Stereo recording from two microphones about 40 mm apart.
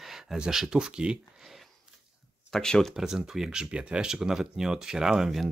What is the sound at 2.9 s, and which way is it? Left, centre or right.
Speech, centre.